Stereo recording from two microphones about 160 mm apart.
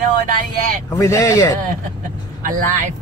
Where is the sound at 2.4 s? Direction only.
55° right (ahead or behind).